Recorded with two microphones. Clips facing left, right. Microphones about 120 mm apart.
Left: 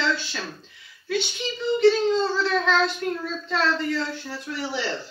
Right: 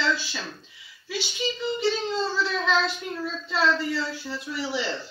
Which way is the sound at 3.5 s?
5° right (ahead or behind).